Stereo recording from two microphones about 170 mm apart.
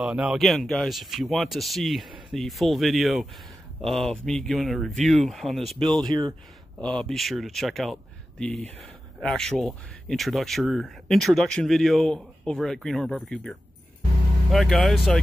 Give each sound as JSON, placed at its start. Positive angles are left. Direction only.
{"t": 0.0, "sound": "speech", "side_deg": -5}
{"t": 6.0, "sound": "speech", "side_deg": -25}
{"t": 6.8, "sound": "speech", "side_deg": 5}